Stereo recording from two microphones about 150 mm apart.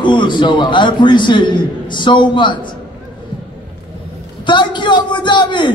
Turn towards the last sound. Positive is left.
turn(degrees=30)  # may be behind; listen again after turning